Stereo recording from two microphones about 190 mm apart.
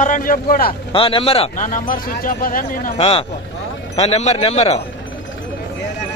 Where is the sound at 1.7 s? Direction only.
45° left (ahead or behind).